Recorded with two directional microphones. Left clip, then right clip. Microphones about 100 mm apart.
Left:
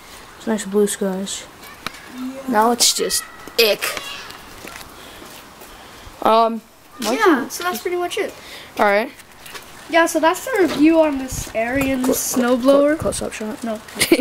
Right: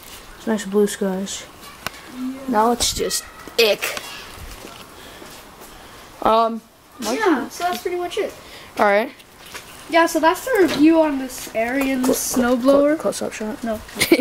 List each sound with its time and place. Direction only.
0.5 s speech: 5° left (ahead or behind)
2.5 s speech: 15° left (ahead or behind)
6.1 s a sound: 15° left (ahead or behind)
7.0 s speech: 35° left (ahead or behind)
7.5 s speech: 20° left (ahead or behind)
8.7 s speech: 5° left (ahead or behind)